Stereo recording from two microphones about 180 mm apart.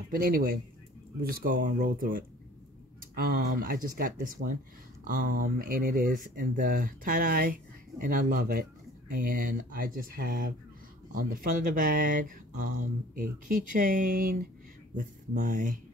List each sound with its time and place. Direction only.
0.2 s speech: 55° right (ahead or behind)